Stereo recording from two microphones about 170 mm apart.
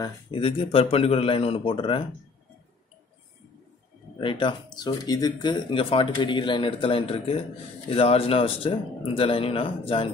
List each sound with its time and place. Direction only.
0.0 s speech: 30° left (ahead or behind)
4.2 s speech: 30° left (ahead or behind)